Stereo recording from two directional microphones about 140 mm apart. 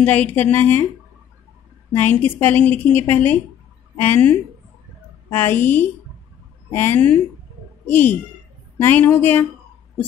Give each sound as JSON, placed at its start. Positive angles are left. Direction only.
{"t": 0.0, "sound": "a woman's voice", "side_deg": 10}
{"t": 1.9, "sound": "a woman's voice", "side_deg": 15}
{"t": 5.3, "sound": "a woman's voice", "side_deg": 15}